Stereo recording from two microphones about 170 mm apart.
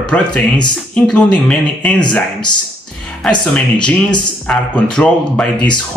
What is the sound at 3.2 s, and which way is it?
Speech, 5° left (ahead or behind).